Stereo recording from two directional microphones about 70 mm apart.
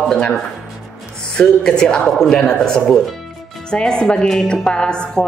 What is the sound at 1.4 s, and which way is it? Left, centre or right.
Speech, centre.